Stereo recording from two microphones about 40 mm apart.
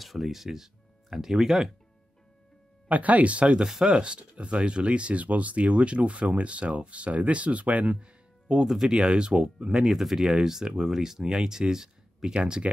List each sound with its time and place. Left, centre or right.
0.0 s speech: centre
2.9 s speech: right
3.6 s speech: centre
3.9 s speech: right
8.6 s speech: centre